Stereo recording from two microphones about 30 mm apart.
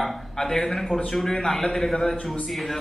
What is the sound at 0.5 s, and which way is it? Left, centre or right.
A man's voice, centre.